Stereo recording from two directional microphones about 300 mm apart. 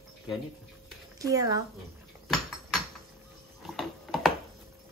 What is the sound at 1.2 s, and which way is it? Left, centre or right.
Speech, centre.